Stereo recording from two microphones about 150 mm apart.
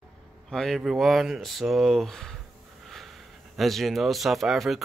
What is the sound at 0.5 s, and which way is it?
Speech, centre (ahead or behind).